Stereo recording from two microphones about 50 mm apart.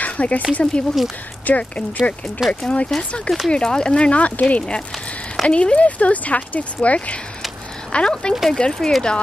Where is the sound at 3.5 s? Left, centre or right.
Centre.